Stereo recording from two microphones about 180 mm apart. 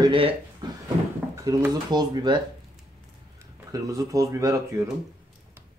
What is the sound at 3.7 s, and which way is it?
Speech, 20° right (ahead or behind).